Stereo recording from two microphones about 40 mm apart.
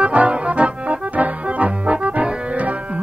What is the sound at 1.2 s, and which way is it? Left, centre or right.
Music, right.